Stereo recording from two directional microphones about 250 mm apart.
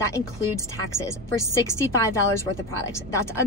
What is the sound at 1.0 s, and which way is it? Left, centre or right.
A woman's voice, centre.